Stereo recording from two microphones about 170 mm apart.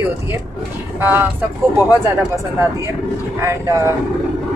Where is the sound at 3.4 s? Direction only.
20° right (ahead or behind).